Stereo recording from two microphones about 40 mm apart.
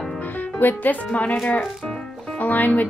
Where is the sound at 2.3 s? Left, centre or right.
Left.